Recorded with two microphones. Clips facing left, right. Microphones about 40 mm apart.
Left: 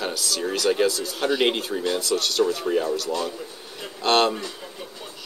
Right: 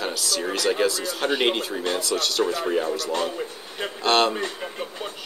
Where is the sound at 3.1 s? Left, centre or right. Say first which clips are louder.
Right 1 dB; right.